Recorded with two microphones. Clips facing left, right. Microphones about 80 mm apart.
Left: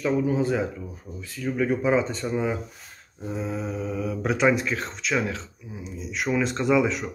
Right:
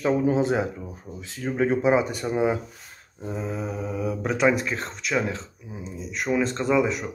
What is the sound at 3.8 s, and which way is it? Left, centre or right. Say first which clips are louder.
Speech: right 3 dB; centre.